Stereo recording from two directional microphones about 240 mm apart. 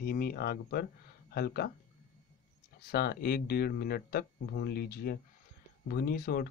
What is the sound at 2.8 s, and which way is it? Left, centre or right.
Speech, left.